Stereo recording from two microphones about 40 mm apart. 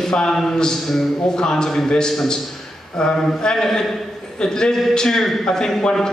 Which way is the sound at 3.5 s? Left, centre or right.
Centre.